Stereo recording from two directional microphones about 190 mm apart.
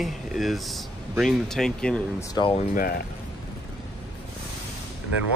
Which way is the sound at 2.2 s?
25° left (ahead or behind).